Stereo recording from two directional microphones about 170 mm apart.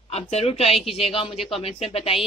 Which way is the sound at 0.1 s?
40° left (ahead or behind).